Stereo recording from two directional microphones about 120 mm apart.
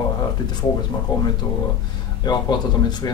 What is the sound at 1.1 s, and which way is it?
A man's voice, 35° left (ahead or behind).